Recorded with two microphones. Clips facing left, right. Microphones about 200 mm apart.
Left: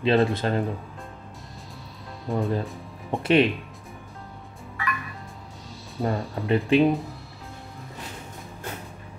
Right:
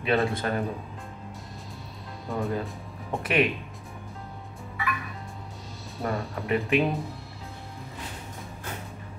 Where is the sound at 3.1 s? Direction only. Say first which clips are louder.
Left 5 dB; 30° left (ahead or behind).